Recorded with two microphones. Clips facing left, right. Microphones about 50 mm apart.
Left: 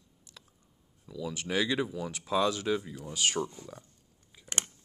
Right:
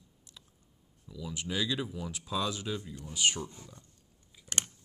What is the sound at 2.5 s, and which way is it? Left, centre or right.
Speech, left.